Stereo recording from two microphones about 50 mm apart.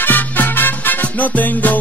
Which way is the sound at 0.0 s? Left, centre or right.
Left.